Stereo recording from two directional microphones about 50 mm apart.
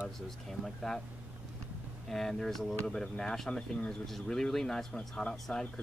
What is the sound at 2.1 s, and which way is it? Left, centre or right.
Speech, centre.